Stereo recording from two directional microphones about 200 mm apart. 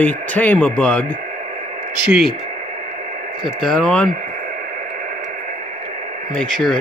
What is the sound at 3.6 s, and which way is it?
Speech, 5° left (ahead or behind).